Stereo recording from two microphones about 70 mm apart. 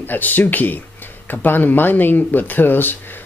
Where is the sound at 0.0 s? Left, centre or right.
Left.